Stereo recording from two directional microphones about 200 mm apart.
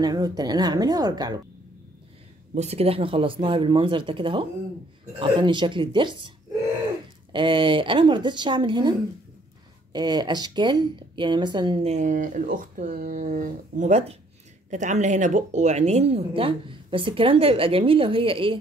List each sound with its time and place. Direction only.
0.0 s speech: 20° right (ahead or behind)
2.5 s speech: 35° right (ahead or behind)
7.3 s speech: 25° right (ahead or behind)
9.9 s speech: 20° right (ahead or behind)